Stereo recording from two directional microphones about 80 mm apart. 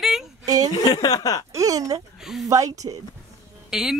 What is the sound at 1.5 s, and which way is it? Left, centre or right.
Speech, right.